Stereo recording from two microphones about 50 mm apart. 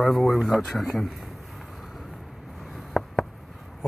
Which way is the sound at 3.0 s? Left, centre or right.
Centre.